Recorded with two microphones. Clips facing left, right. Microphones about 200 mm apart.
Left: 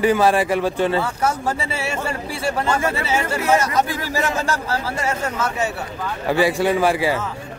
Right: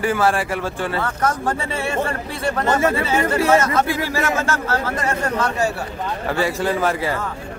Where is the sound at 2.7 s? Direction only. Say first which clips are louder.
Right 3 dB; 25° right (ahead or behind).